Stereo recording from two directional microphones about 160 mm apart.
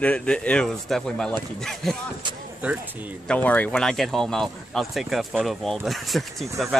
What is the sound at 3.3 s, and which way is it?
Speech, 10° left (ahead or behind).